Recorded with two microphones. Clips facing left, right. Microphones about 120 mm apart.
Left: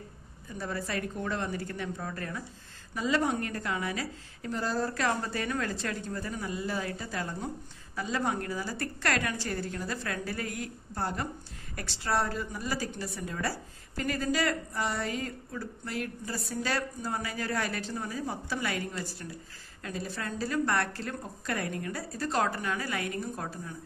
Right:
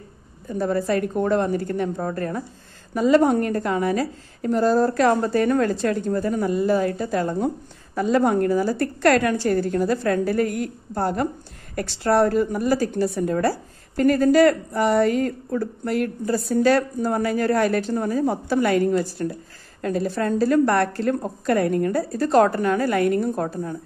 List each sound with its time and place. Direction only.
0.5 s a woman's voice: 45° right (ahead or behind)